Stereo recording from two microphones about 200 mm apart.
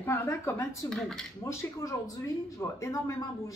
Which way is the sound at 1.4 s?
15° left (ahead or behind).